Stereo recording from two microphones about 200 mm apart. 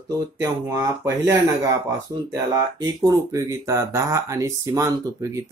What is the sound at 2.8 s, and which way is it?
Speech, 15° right (ahead or behind).